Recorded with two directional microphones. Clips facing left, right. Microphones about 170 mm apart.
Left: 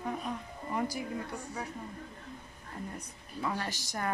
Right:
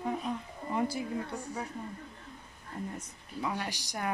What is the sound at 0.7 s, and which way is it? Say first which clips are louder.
Speech: right 2 dB; 20° right (ahead or behind).